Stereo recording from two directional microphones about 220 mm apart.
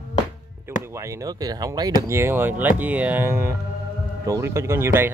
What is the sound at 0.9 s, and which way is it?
Speech, 15° right (ahead or behind).